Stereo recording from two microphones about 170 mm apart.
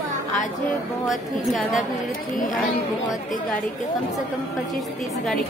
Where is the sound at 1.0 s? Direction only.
Centre (ahead or behind).